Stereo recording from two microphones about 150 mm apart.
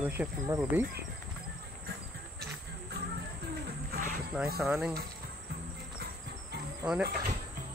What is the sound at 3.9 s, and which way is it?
Music, 65° right (ahead or behind).